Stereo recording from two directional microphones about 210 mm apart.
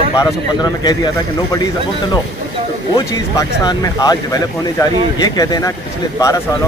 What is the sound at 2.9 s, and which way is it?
Speech, 20° left (ahead or behind).